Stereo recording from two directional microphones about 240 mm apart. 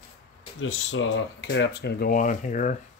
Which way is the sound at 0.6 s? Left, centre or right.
Left.